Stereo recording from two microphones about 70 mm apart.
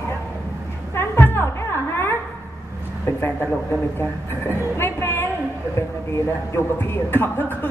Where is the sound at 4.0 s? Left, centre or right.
Left.